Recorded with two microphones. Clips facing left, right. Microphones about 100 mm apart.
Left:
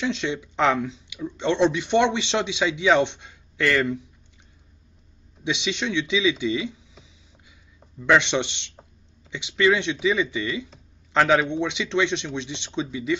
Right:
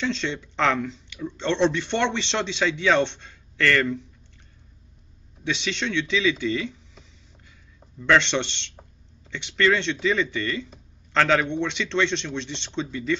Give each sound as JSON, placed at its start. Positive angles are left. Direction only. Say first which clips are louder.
{"t": 0.0, "sound": "speech", "louder": "left 1 dB", "side_deg": 15}
{"t": 5.4, "sound": "speech", "louder": "left 1 dB", "side_deg": 15}